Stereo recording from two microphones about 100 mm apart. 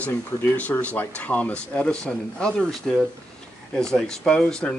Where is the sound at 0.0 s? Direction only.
15° left (ahead or behind).